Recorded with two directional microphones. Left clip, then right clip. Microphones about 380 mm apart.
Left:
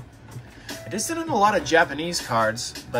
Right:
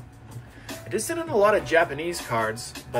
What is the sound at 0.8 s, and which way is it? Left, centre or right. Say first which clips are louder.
Speech: left 1 dB; centre.